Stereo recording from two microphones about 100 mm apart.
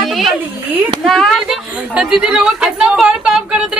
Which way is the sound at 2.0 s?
10° right (ahead or behind).